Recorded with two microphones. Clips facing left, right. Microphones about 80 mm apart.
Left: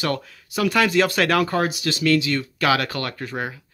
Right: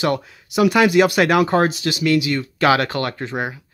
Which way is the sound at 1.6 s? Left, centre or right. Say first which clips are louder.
Right 5 dB; right.